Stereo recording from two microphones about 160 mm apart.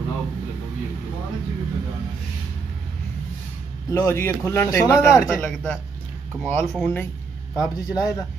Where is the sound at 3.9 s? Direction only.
15° left (ahead or behind).